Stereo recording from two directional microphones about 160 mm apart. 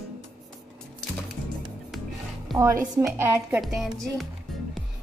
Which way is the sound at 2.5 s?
20° right (ahead or behind).